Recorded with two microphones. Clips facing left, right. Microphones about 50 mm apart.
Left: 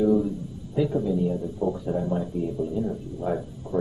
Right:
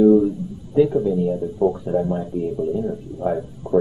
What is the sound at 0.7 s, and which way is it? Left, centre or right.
Speech, centre.